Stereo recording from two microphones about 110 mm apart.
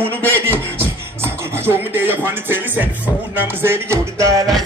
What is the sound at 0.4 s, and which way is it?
Beatboxing, 20° right (ahead or behind).